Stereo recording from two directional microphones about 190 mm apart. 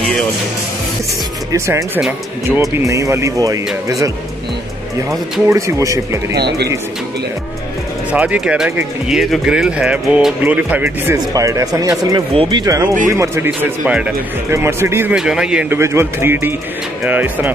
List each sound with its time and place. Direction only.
1.5 s speech: 15° right (ahead or behind)
5.5 s speech: 15° right (ahead or behind)
6.3 s speech: 60° right (ahead or behind)
8.1 s speech: 5° right (ahead or behind)